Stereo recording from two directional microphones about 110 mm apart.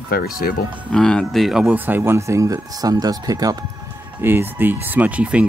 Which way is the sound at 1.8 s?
20° right (ahead or behind).